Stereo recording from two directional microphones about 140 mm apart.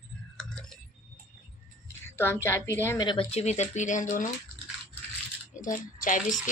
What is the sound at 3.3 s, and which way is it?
Speech, 50° left (ahead or behind).